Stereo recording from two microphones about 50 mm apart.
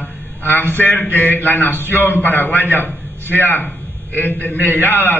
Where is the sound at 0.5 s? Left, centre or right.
Left.